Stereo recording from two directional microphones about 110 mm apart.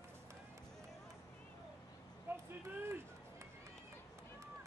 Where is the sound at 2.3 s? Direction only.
20° right (ahead or behind).